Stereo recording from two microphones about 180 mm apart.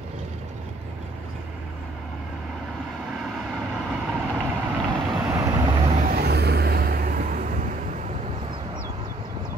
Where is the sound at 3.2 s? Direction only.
5° right (ahead or behind).